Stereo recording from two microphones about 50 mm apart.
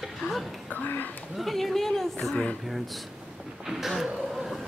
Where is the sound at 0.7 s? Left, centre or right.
Left.